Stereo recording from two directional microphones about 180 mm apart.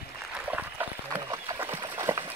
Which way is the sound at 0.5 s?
10° right (ahead or behind).